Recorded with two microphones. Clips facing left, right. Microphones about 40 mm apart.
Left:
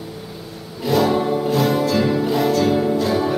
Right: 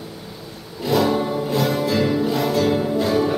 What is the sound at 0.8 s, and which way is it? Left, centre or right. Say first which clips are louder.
Music: left 2 dB; centre.